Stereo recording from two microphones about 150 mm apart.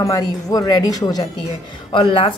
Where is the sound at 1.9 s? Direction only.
35° left (ahead or behind).